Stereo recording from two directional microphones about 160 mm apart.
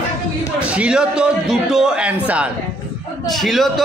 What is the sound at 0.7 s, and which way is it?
A man's voice, 5° right (ahead or behind).